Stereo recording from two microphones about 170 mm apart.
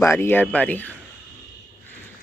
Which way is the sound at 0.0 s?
15° left (ahead or behind).